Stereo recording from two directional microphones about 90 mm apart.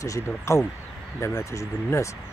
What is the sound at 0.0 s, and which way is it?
Speech, 35° left (ahead or behind).